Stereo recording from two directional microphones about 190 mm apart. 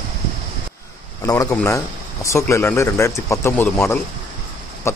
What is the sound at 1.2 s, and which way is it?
Speech, 15° left (ahead or behind).